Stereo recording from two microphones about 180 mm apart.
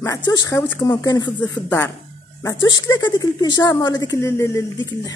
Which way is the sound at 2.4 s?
20° left (ahead or behind).